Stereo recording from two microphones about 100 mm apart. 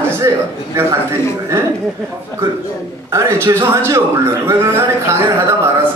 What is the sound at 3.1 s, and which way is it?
Speech, 30° right (ahead or behind).